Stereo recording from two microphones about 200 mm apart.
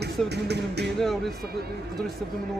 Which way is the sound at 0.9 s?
Centre (ahead or behind).